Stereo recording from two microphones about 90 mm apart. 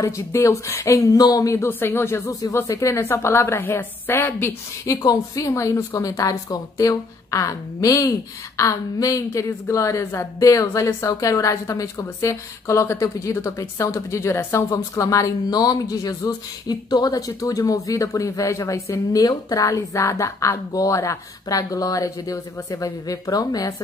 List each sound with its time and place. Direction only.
0.0 s a woman's voice: 35° left (ahead or behind)
1.7 s a woman's voice: 25° left (ahead or behind); by 23.7 s 45° left (ahead or behind)